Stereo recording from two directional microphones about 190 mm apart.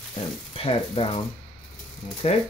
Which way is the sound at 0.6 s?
30° left (ahead or behind).